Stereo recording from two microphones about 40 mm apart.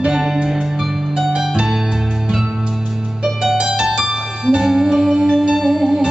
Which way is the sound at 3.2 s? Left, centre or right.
Centre.